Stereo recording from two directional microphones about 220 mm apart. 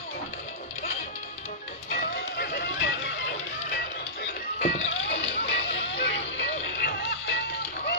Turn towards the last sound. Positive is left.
turn(degrees=50)  # may be behind; listen again after turning